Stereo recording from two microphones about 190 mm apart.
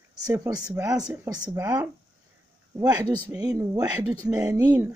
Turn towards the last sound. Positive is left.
turn(degrees=-10)  # may be behind; listen again after turning